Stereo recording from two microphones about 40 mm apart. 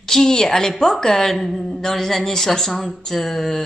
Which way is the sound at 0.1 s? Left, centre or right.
Centre.